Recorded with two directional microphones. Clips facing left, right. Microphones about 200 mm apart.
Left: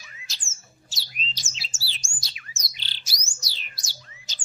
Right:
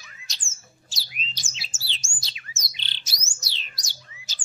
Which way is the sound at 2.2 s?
25° right (ahead or behind).